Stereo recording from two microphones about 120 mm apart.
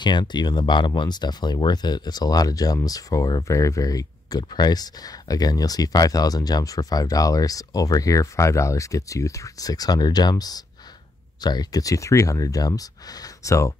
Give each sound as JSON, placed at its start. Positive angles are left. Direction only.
{"t": 0.0, "sound": "speech", "side_deg": 40}